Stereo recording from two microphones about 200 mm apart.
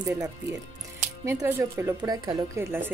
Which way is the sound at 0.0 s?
15° right (ahead or behind).